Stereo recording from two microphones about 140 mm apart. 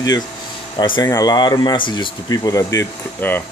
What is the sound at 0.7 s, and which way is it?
Speech, 35° left (ahead or behind).